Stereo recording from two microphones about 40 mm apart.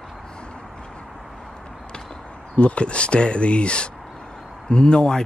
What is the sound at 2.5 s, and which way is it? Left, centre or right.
Speech, left.